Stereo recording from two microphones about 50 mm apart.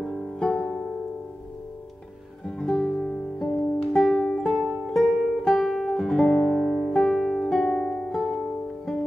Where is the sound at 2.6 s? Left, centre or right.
Centre.